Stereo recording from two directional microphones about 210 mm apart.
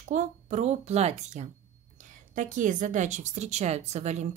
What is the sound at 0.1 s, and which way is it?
Speech, 35° right (ahead or behind).